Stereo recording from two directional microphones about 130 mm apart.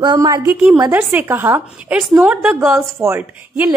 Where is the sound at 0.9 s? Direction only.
15° right (ahead or behind).